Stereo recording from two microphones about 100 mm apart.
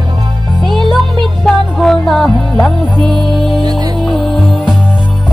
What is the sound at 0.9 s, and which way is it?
Music, 5° left (ahead or behind).